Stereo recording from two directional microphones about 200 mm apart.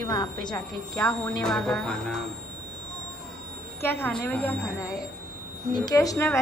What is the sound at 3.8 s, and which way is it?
Speech, 10° left (ahead or behind).